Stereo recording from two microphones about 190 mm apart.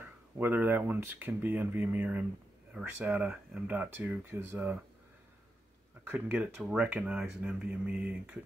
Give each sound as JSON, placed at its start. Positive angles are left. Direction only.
{"t": 0.0, "sound": "speech", "side_deg": -10}
{"t": 6.0, "sound": "speech", "side_deg": -5}